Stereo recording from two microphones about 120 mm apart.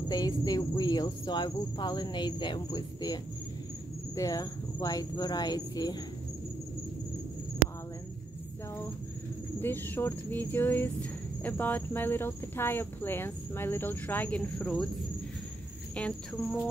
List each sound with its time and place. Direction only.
0.1 s cricket: 30° left (ahead or behind)
9.6 s speech: 20° left (ahead or behind)
15.9 s speech: 10° left (ahead or behind)